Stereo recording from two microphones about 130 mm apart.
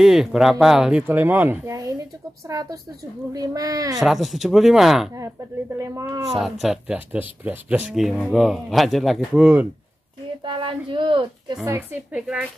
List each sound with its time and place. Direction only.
0.0 s speech: 5° right (ahead or behind)
2.4 s speech: 25° right (ahead or behind)
4.0 s speech: centre (ahead or behind)
5.8 s speech: 25° right (ahead or behind)
6.3 s speech: centre (ahead or behind)
7.9 s speech: 5° right (ahead or behind)
9.4 s speech: 10° right (ahead or behind)
10.4 s speech: 40° right (ahead or behind)
11.6 s speech: 15° right (ahead or behind)